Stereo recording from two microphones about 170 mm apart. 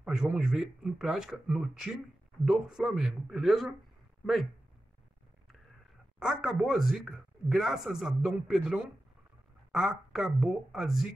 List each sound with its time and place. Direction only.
0.0 s a man's voice: 5° right (ahead or behind)
6.1 s a man's voice: 5° right (ahead or behind)